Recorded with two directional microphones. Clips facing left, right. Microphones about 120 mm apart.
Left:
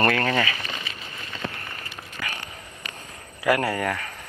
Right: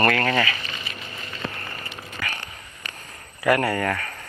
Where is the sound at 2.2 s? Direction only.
15° left (ahead or behind).